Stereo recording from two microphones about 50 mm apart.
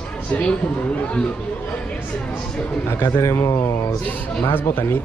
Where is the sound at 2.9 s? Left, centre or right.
Left.